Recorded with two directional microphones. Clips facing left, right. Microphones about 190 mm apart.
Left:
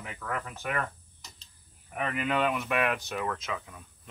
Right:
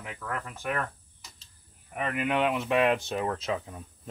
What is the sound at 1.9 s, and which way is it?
Speech, 10° right (ahead or behind).